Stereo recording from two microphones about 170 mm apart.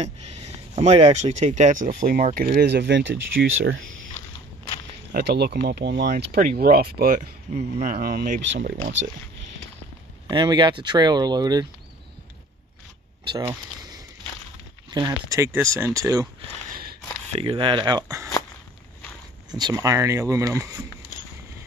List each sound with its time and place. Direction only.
0.0 s speech: 40° right (ahead or behind); by 3.4 s 90° right
5.1 s speech: 70° right (ahead or behind)
7.2 s speech: 45° right (ahead or behind); by 8.7 s 75° right (ahead or behind)
10.2 s speech: 25° right (ahead or behind)
13.4 s speech: 20° right (ahead or behind)
17.3 s speech: 35° right (ahead or behind); by 18.3 s 20° right (ahead or behind)
19.5 s speech: 20° right (ahead or behind)